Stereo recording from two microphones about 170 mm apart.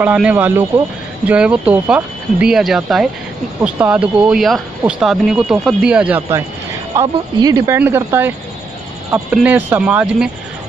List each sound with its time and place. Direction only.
0.0 s speech: 10° right (ahead or behind)
7.0 s speech: 20° right (ahead or behind); by 10.3 s 5° right (ahead or behind)